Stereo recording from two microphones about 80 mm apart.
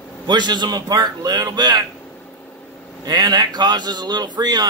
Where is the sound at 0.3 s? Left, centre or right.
Right.